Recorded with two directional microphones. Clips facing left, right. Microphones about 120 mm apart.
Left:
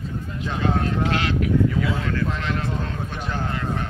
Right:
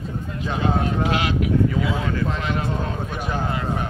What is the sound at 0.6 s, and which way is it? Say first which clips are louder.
A man's voice: right 1 dB; 10° right (ahead or behind).